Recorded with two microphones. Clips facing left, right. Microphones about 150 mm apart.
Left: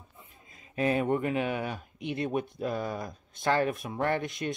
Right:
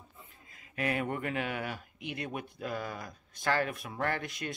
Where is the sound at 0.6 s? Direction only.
25° left (ahead or behind).